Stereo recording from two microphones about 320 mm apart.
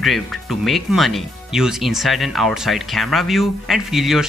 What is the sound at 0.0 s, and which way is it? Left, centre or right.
Speech, centre.